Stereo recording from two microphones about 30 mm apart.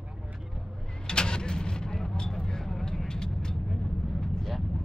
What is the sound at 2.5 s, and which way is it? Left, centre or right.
Vehicle, centre.